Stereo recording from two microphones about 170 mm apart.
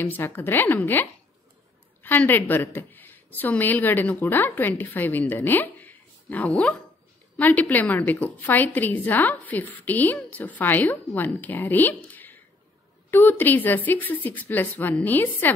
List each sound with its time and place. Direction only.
0.0 s a woman's voice: 10° left (ahead or behind)
2.0 s a woman's voice: 10° left (ahead or behind)